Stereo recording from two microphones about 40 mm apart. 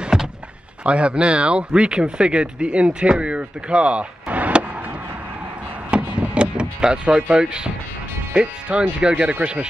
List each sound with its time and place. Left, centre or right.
0.1 s door: centre
0.8 s speech: right
5.9 s vehicle: right
7.2 s speech: right